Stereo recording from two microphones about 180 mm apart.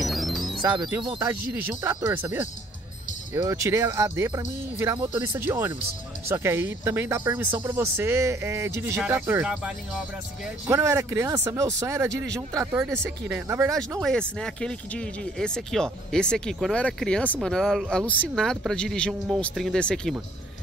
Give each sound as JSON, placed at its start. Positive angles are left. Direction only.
{"t": 0.0, "sound": "music", "side_deg": 0}
{"t": 0.9, "sound": "speech", "side_deg": -10}
{"t": 14.0, "sound": "speech", "side_deg": 5}